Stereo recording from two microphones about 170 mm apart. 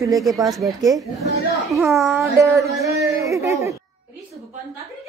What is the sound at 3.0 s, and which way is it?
Speech, 20° right (ahead or behind).